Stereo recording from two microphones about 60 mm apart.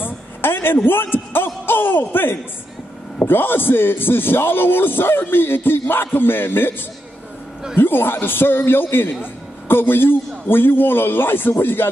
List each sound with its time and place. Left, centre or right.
0.0 s a sound: left
0.8 s a man's voice: left
7.7 s a man's voice: left